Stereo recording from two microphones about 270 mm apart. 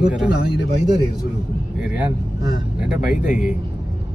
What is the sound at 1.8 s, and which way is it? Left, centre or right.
Speech, centre.